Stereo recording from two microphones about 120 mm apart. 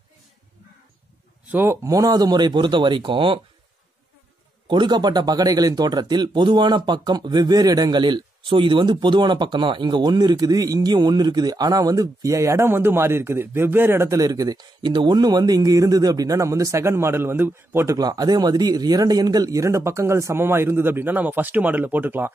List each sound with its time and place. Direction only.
1.5 s speech: 20° right (ahead or behind); by 3.3 s 45° right (ahead or behind)
4.6 s speech: 40° right (ahead or behind); by 17.9 s 20° right (ahead or behind)
17.9 s speech: 30° right (ahead or behind); by 22.3 s 15° right (ahead or behind)